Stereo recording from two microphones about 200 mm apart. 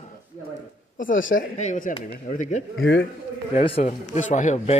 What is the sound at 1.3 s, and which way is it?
A man's voice, 40° left (ahead or behind).